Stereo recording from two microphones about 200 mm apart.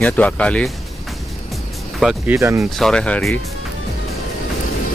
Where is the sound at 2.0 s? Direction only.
5° right (ahead or behind).